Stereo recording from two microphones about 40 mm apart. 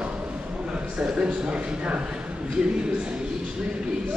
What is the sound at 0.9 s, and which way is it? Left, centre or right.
Speech, right.